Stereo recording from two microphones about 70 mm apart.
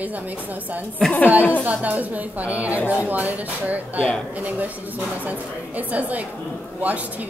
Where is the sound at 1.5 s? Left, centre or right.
Right.